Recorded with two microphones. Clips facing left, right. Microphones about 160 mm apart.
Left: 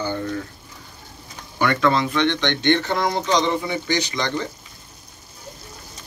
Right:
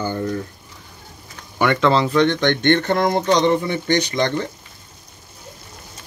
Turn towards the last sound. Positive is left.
turn(degrees=-55)  # may be behind; listen again after turning